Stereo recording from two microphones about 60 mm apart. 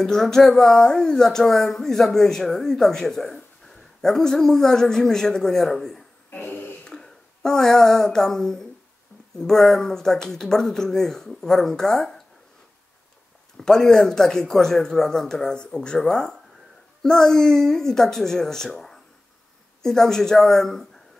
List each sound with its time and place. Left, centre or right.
0.0 s speech: centre
6.3 s a sound: left
6.8 s speech: centre
13.6 s speech: centre
19.8 s speech: centre